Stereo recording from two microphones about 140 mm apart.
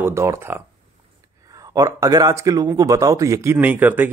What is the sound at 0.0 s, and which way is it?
A man's voice, 20° right (ahead or behind).